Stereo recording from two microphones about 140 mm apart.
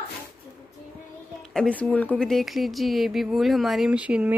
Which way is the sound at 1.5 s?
5° left (ahead or behind).